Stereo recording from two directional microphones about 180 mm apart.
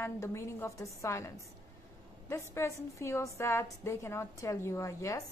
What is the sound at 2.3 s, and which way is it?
A woman's voice, 15° left (ahead or behind).